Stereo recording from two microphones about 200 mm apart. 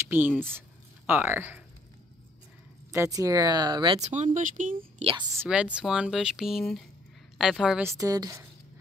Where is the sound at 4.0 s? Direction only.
35° right (ahead or behind).